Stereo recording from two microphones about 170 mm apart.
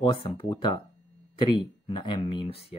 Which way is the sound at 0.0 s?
30° left (ahead or behind).